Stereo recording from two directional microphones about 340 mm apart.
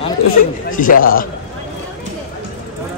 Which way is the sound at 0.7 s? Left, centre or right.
Left.